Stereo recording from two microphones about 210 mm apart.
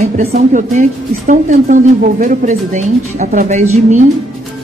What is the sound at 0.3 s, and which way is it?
Speech, 35° right (ahead or behind).